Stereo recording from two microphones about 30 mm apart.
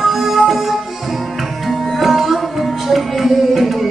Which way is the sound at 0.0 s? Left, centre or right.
Centre.